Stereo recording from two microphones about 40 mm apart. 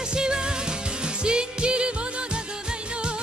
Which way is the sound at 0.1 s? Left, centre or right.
Centre.